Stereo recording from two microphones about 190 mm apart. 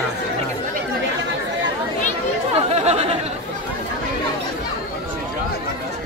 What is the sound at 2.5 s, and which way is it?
Chatter, 35° right (ahead or behind).